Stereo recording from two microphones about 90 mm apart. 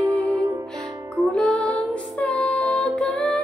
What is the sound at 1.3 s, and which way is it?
Music, 10° left (ahead or behind).